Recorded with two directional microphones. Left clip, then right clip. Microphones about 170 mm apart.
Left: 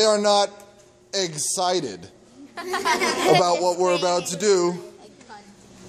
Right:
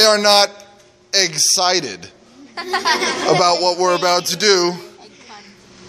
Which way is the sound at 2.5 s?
30° right (ahead or behind).